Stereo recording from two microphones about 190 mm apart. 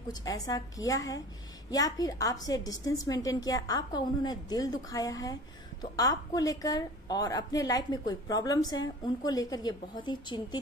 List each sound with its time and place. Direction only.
0.1 s a woman's voice: 20° left (ahead or behind)